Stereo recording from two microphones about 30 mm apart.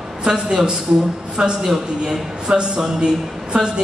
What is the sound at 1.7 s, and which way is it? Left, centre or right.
A man's voice, right.